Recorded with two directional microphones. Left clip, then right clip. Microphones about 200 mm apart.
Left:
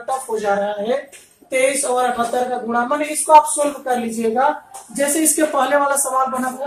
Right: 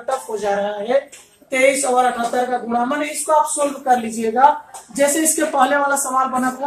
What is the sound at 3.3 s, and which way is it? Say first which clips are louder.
Speech: left 6 dB; 15° left (ahead or behind).